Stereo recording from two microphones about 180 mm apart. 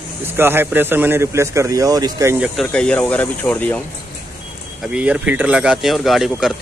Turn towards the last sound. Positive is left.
turn(degrees=0)  # may be behind; listen again after turning